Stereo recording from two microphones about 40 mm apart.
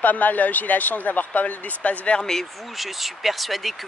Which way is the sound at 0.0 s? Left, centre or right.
Left.